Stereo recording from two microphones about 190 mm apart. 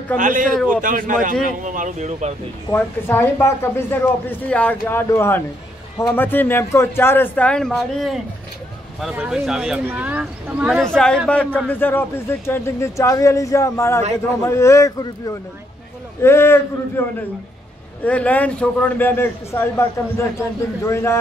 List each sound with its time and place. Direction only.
0.2 s speech: 45° right (ahead or behind)
2.7 s a man's voice: 10° left (ahead or behind)
18.0 s a man's voice: 5° left (ahead or behind)
20.8 s a man's voice: 15° left (ahead or behind)